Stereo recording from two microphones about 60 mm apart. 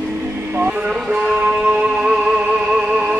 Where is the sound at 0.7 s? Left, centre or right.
Centre.